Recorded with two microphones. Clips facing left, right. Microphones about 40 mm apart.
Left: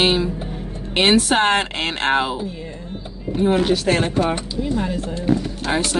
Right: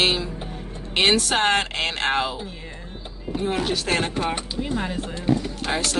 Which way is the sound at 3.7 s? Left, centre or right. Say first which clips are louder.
Left 5 dB; centre.